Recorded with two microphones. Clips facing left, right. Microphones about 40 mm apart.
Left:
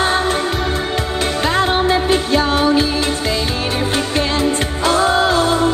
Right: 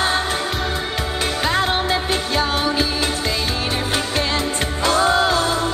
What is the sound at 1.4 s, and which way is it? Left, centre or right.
Music, centre.